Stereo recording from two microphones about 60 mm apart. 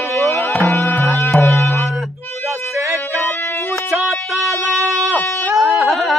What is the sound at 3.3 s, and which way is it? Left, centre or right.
Music, left.